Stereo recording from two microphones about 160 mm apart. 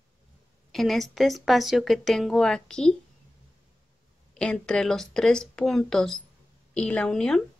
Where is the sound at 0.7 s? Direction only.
Centre (ahead or behind).